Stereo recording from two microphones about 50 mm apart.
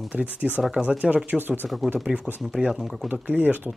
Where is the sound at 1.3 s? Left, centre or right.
Right.